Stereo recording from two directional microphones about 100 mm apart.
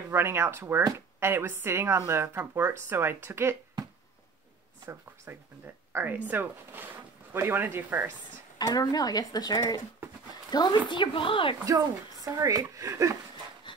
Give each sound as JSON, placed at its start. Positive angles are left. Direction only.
{"t": 0.1, "sound": "speech", "side_deg": -25}
{"t": 4.8, "sound": "speech", "side_deg": -25}
{"t": 8.5, "sound": "speech", "side_deg": 40}
{"t": 10.9, "sound": "speech", "side_deg": 55}
{"t": 11.6, "sound": "speech", "side_deg": -35}
{"t": 13.7, "sound": "pant", "side_deg": 50}